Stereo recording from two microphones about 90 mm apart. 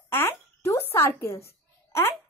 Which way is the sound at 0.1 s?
25° left (ahead or behind).